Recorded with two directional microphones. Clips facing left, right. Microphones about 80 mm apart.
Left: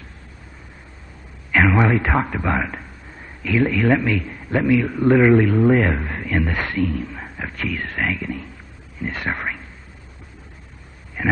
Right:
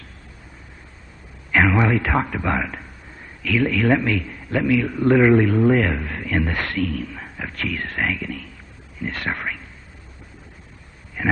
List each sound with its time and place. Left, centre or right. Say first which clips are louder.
1.5 s a sound: left 1 dB; centre
1.8 s a man's voice: left 1 dB; centre
3.4 s a man's voice: left 1 dB; centre
6.3 s a man's voice: left 1 dB; centre
8.2 s a man's voice: left 2 dB; centre
11.2 s a sound: left 1 dB; centre